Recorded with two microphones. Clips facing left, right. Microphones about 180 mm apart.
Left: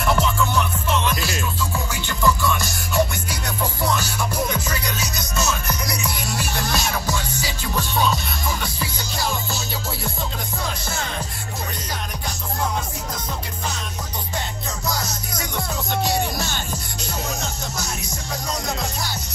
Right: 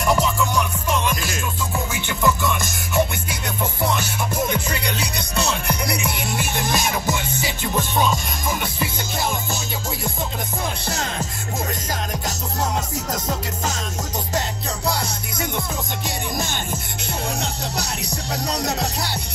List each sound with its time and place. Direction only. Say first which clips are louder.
0.0 s music: right 1 dB; 10° right (ahead or behind)
4.6 s music: right 1 dB; 30° right (ahead or behind)
10.9 s music: right 2 dB; 40° right (ahead or behind)
14.9 s music: right 3 dB; 30° right (ahead or behind)
17.4 s music: right 3 dB; 35° right (ahead or behind)